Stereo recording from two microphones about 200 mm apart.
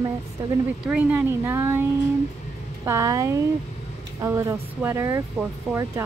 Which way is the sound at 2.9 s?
15° right (ahead or behind).